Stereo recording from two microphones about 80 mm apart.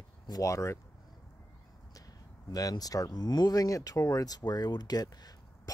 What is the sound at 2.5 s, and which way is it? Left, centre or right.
Speech, left.